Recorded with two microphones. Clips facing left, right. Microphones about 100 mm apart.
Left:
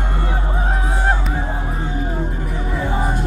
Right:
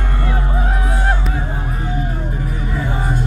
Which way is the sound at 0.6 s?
30° left (ahead or behind).